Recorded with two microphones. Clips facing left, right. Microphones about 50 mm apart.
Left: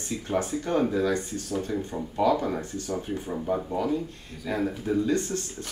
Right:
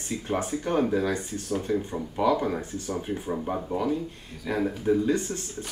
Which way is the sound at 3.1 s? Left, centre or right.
Centre.